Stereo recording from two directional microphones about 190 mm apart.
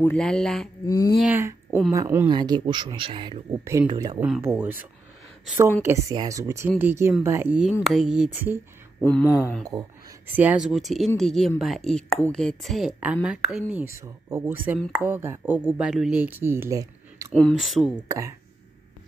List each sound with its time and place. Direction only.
0.0 s speech: 5° left (ahead or behind)
0.8 s speech: 20° left (ahead or behind)
1.1 s speech: 5° right (ahead or behind); by 4.2 s 25° right (ahead or behind)
4.2 s speech: 10° right (ahead or behind)
5.9 s speech: 15° right (ahead or behind)
9.0 s speech: 10° left (ahead or behind)
10.2 s speech: 10° right (ahead or behind)
17.3 s speech: centre (ahead or behind)
18.0 s speech: 15° right (ahead or behind)